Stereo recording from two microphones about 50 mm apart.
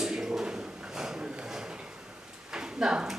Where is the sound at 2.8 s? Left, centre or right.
Centre.